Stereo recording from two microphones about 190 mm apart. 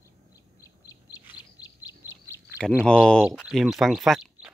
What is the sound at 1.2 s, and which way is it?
Bird, 10° right (ahead or behind).